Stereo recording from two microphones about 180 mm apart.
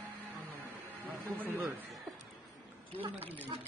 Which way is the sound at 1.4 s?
10° right (ahead or behind).